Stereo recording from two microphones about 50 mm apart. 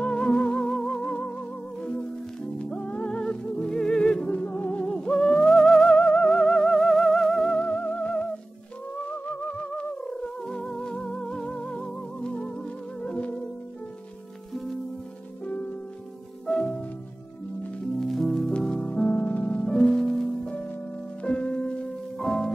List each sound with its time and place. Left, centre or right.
0.0 s music: left
1.0 s music: left; by 7.5 s centre
7.5 s music: left
9.2 s music: left
14.5 s music: centre
16.4 s music: centre
18.0 s music: centre
18.5 s music: centre
19.0 s music: left; by 20.2 s centre
20.4 s music: left
22.2 s music: centre